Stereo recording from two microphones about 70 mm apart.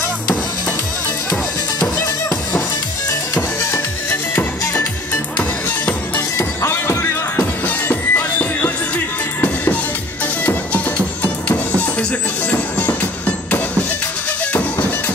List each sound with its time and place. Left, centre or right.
3.7 s music: left
5.4 s music: left
6.1 s music: left